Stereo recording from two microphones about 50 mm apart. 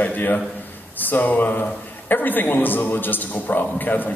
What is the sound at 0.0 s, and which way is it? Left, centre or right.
A man's voice, left.